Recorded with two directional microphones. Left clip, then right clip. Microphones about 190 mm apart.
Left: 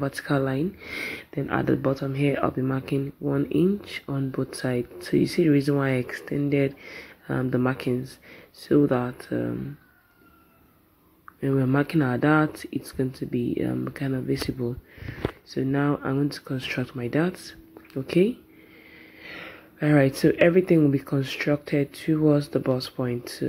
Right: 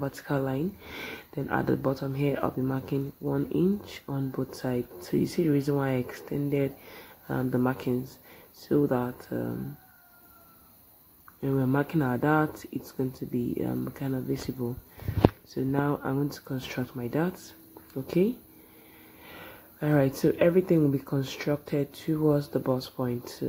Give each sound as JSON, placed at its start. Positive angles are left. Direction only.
{"t": 0.0, "sound": "speech", "side_deg": 15}
{"t": 11.4, "sound": "speech", "side_deg": 15}
{"t": 19.3, "sound": "speech", "side_deg": 10}